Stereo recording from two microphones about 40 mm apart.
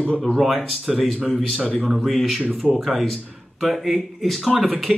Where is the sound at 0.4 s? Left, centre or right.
Centre.